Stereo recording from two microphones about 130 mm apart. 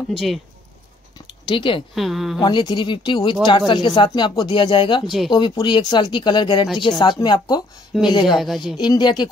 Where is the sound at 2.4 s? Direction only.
35° left (ahead or behind).